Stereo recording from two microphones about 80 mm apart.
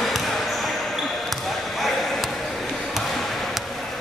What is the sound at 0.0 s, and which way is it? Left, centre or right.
Basketball bounce, centre.